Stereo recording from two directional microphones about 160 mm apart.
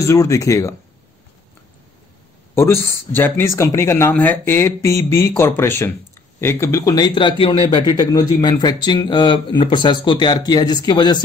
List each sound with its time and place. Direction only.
0.0 s speech: 20° left (ahead or behind)
2.5 s speech: 15° left (ahead or behind)